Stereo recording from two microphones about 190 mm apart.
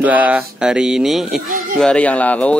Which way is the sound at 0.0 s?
10° right (ahead or behind).